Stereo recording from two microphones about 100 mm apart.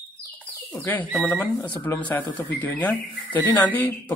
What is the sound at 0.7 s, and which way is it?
Speech, 20° left (ahead or behind).